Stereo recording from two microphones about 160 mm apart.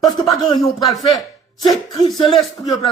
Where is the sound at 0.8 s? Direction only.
Centre (ahead or behind).